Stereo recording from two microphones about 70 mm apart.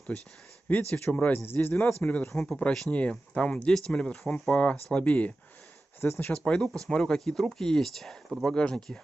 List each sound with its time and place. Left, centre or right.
0.7 s a man's voice: left
2.3 s speech: centre
2.9 s a man's voice: centre
5.9 s speech: left
6.3 s speech: centre